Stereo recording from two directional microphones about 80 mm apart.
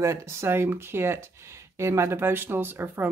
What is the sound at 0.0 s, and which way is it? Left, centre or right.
Speech, right.